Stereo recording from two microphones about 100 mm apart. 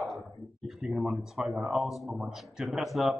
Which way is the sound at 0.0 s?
Centre (ahead or behind).